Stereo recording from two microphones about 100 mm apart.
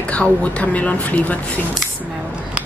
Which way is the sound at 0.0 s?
10° left (ahead or behind).